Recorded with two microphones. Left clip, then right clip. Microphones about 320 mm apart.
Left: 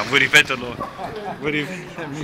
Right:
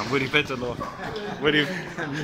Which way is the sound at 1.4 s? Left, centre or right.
Right.